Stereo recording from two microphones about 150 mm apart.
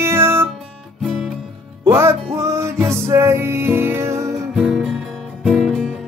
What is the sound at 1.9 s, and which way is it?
Music, 15° right (ahead or behind).